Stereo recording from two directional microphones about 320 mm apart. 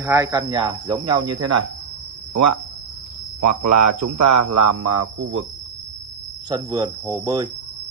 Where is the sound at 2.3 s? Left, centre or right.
Right.